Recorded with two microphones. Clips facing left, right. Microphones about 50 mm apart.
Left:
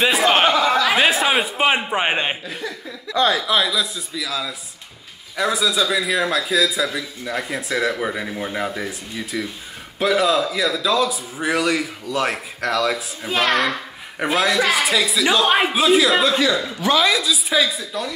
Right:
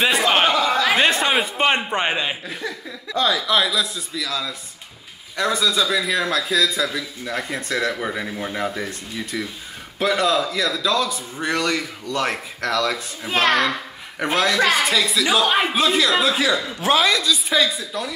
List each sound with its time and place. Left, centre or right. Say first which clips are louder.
0.0 s a sound: left 2 dB; centre
0.7 s speech: left 1 dB; centre
3.2 s speech: left 2 dB; left
3.4 s a man's voice: even; centre